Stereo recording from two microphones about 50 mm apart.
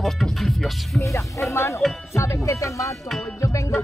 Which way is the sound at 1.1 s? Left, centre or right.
Left.